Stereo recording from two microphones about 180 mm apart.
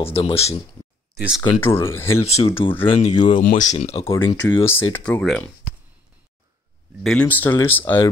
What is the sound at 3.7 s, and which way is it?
Speech, 35° left (ahead or behind).